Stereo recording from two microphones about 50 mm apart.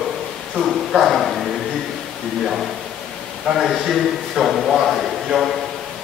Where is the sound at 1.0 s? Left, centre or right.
Centre.